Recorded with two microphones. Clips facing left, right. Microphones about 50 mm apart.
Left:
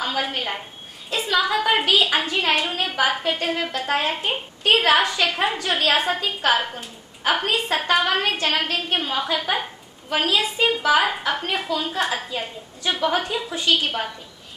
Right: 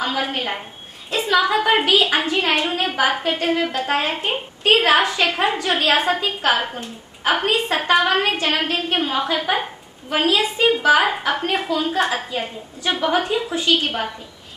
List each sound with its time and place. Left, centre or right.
0.4 s a woman's voice: centre
10.0 s a woman's voice: right
10.3 s a woman's voice: centre